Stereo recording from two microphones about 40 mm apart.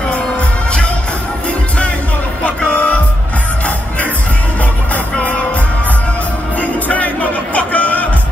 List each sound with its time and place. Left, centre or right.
2.4 s music: left
6.6 s music: left